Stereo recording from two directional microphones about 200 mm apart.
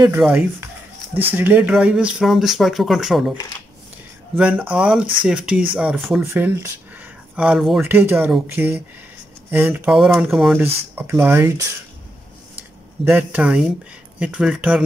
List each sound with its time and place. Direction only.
0.2 s speech: 5° right (ahead or behind)
4.4 s speech: 5° right (ahead or behind)
6.3 s speech: 10° right (ahead or behind)
13.0 s speech: 10° right (ahead or behind)